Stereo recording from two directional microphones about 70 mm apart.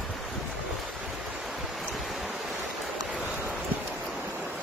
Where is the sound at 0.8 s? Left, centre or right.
Centre.